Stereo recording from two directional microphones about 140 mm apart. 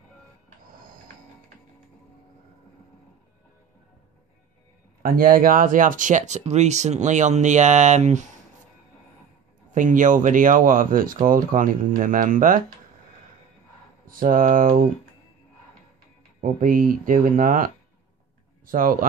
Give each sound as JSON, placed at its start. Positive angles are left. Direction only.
{"t": 5.0, "sound": "speech", "side_deg": -90}
{"t": 9.7, "sound": "speech", "side_deg": -65}
{"t": 14.0, "sound": "speech", "side_deg": -85}
{"t": 16.3, "sound": "speech", "side_deg": -75}
{"t": 18.7, "sound": "speech", "side_deg": -80}